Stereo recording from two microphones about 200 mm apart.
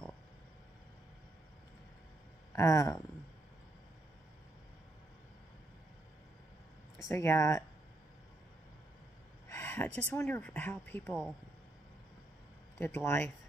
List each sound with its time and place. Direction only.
2.5 s speech: 15° left (ahead or behind)
7.1 s speech: 15° left (ahead or behind)
9.5 s speech: 10° left (ahead or behind)
12.7 s speech: 10° left (ahead or behind)